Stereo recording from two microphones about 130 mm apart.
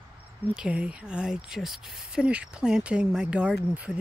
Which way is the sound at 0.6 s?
5° right (ahead or behind).